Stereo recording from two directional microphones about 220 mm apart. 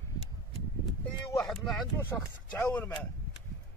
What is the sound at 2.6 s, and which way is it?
Speech, 10° left (ahead or behind).